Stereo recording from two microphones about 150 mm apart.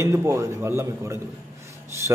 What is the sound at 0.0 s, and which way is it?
A man's voice, 20° right (ahead or behind).